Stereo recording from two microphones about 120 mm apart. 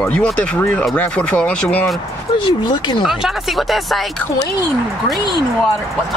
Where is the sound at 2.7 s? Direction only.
40° left (ahead or behind).